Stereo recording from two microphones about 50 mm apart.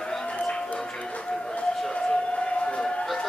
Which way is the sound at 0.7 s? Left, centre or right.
Centre.